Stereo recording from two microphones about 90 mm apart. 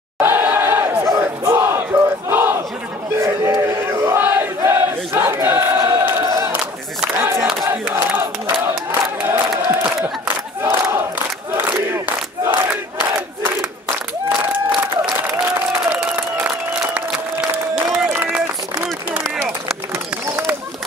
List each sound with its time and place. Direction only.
0.2 s chatter: 25° right (ahead or behind)
1.2 s battle cry: 30° right (ahead or behind)
3.2 s a sound: 35° right (ahead or behind)
6.2 s battle cry: 35° right (ahead or behind)
7.2 s crowd: 30° right (ahead or behind)
7.9 s battle cry: 25° right (ahead or behind)
8.6 s crowd: 30° right (ahead or behind)
17.9 s run: 15° right (ahead or behind)